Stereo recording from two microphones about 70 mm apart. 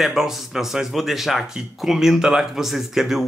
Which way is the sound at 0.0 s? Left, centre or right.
Centre.